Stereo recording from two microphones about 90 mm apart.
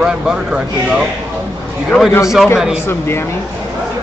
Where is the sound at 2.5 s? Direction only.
10° right (ahead or behind).